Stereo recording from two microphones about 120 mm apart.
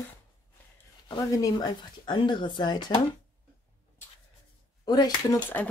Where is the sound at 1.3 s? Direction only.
30° left (ahead or behind).